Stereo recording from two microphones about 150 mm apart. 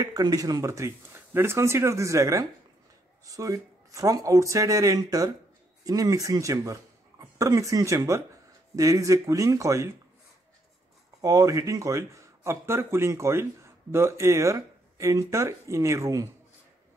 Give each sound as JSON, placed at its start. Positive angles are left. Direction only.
{"t": 0.0, "sound": "speech", "side_deg": -25}
{"t": 11.1, "sound": "speech", "side_deg": -25}